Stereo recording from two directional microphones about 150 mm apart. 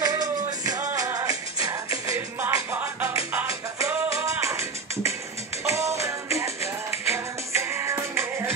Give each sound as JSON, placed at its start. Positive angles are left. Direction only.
{"t": 0.0, "sound": "music", "side_deg": -25}